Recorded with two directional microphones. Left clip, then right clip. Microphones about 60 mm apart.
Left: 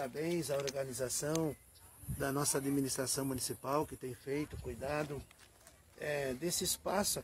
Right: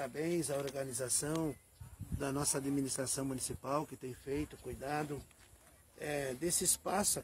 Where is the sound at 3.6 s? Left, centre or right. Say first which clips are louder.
Left 2 dB; left.